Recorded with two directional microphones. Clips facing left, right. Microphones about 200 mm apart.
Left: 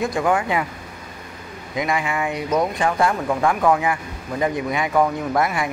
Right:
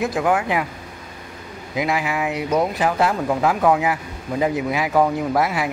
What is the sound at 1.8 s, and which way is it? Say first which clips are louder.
Speech: right 1 dB; 5° right (ahead or behind).